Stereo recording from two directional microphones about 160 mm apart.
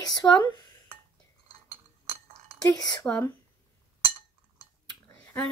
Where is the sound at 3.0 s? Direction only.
10° left (ahead or behind).